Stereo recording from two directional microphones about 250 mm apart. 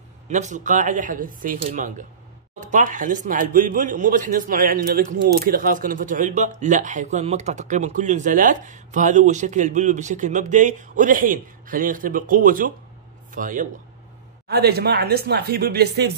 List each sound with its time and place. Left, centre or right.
0.3 s speech: right